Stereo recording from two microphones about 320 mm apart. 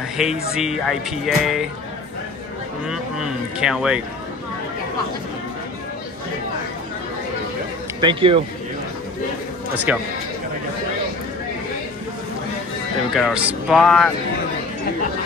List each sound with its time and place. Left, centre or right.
0.2 s speech: centre
2.9 s speech: centre
8.0 s speech: centre
9.9 s speech: centre
13.1 s speech: centre